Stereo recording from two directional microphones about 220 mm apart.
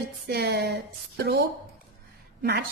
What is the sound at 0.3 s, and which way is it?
Speech, 45° right (ahead or behind).